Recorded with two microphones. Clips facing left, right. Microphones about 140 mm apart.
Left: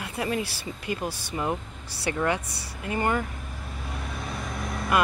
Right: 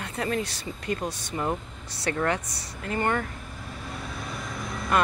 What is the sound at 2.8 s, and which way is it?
Speech, 15° left (ahead or behind).